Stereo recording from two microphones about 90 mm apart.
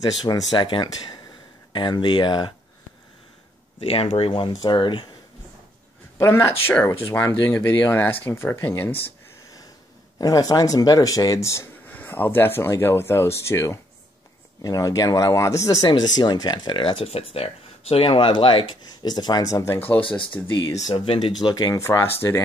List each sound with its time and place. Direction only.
0.2 s speech: 45° left (ahead or behind)
0.7 s speech: 60° left (ahead or behind)
3.9 s speech: 85° left
4.6 s speech: 60° left (ahead or behind)
6.1 s speech: 30° left (ahead or behind)
10.1 s speech: 40° left (ahead or behind)
11.9 s speech: 20° left (ahead or behind); by 15.9 s 35° left (ahead or behind)
15.9 s speech: 55° left (ahead or behind); by 20.5 s 25° left (ahead or behind)
20.9 s speech: 75° left (ahead or behind)
21.2 s speech: 50° left (ahead or behind)
21.7 s speech: 30° left (ahead or behind)